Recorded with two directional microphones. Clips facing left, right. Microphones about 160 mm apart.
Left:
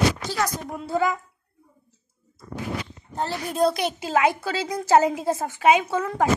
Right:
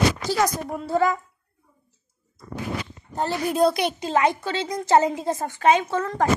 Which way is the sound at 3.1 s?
Centre (ahead or behind).